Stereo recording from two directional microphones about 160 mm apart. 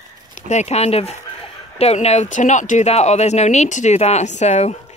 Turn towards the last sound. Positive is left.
turn(degrees=45)  # may be behind; listen again after turning